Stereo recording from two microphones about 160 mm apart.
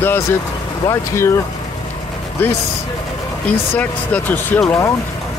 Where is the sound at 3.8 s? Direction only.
10° left (ahead or behind).